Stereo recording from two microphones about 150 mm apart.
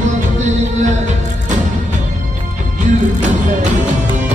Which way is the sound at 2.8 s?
55° right (ahead or behind).